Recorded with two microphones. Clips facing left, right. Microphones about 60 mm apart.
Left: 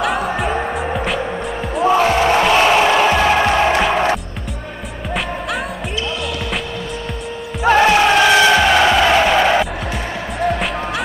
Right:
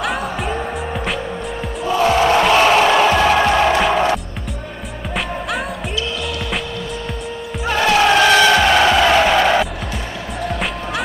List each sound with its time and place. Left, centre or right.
0.0 s music: centre
1.8 s music: left
2.0 s music: centre
8.0 s music: centre